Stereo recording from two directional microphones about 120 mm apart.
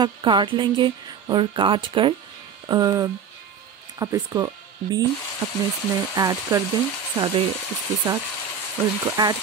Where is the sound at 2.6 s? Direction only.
30° right (ahead or behind).